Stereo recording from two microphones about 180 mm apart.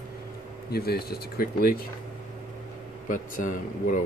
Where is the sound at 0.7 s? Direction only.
60° left (ahead or behind).